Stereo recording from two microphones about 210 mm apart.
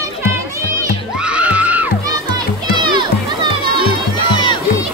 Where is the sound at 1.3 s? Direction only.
5° right (ahead or behind).